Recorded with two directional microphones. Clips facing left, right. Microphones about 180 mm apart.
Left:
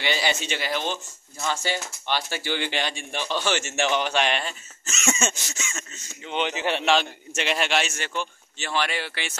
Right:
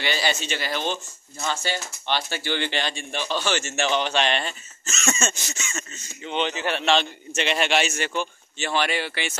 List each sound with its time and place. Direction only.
0.0 s speech: 20° left (ahead or behind)
6.9 s a man's voice: 5° left (ahead or behind)